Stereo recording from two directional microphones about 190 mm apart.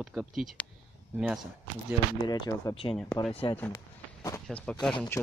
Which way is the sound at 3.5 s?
15° left (ahead or behind).